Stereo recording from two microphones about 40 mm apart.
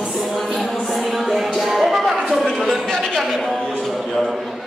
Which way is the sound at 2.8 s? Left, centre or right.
Centre.